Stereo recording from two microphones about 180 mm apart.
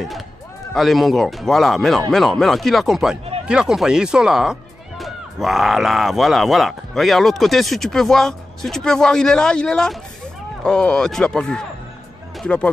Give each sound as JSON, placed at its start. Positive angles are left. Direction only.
{"t": 0.7, "sound": "speech", "side_deg": 0}